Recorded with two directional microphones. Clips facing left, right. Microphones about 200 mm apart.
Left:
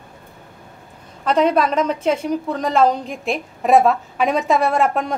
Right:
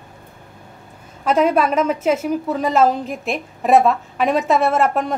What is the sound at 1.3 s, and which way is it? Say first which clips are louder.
A woman's voice: even; 5° right (ahead or behind).